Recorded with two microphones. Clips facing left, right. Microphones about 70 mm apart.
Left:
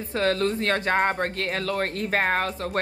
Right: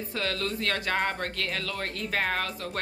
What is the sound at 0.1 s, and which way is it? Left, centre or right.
Speech, left.